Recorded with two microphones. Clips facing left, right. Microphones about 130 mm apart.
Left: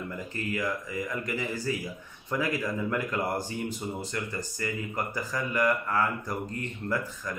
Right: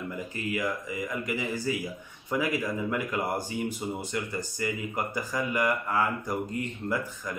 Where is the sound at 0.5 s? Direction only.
10° right (ahead or behind).